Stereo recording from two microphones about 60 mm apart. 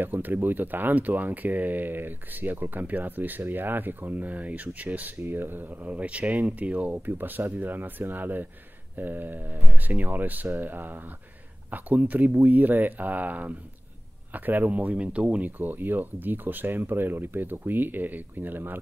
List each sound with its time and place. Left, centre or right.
0.0 s speech: right